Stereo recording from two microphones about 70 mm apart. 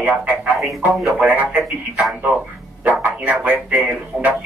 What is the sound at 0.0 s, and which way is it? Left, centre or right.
Speech, centre.